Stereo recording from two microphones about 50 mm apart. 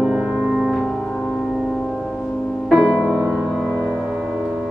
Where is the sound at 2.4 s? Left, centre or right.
Centre.